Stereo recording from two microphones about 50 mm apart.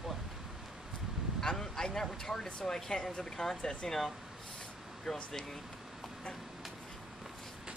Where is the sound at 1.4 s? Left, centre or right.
Centre.